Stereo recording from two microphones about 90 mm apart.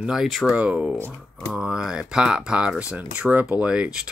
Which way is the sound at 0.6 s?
10° right (ahead or behind).